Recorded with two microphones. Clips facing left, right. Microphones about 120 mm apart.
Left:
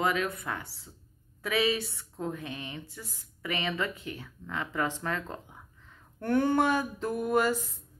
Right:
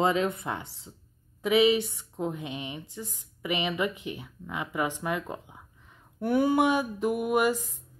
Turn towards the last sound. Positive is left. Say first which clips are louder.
# right 2 dB
turn(degrees=-15)  # may be behind; listen again after turning